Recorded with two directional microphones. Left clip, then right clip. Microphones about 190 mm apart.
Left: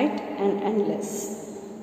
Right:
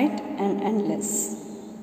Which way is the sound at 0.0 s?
35° right (ahead or behind).